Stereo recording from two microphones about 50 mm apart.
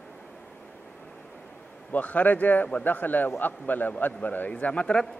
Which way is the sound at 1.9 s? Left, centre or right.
Left.